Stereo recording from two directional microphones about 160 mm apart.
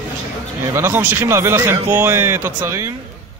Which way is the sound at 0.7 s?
15° right (ahead or behind).